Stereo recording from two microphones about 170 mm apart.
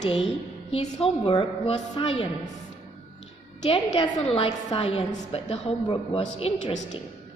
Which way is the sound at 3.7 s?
35° left (ahead or behind).